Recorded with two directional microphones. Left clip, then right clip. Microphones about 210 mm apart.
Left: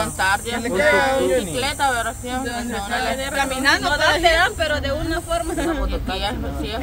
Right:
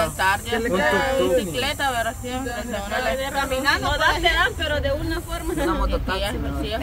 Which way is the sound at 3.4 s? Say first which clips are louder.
Left 4 dB; 40° left (ahead or behind).